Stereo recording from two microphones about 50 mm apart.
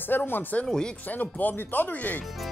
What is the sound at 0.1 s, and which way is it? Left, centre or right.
Speech, left.